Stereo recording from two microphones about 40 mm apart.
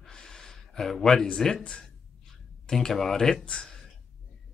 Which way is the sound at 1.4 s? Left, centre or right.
Centre.